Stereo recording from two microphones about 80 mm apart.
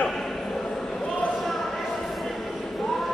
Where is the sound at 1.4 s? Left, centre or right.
Centre.